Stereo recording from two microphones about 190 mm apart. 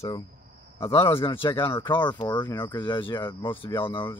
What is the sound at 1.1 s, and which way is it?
Speech, 30° left (ahead or behind).